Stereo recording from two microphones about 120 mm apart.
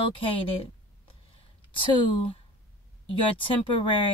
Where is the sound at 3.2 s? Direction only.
45° left (ahead or behind).